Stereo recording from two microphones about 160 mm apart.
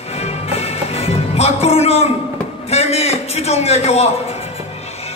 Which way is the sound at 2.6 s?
40° left (ahead or behind).